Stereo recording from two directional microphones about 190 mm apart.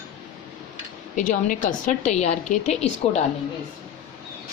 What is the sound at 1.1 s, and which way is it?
A woman's voice, 45° left (ahead or behind).